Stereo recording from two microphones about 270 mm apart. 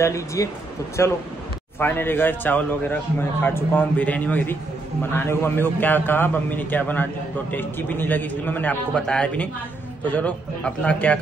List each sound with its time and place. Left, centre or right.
0.0 s a man's voice: centre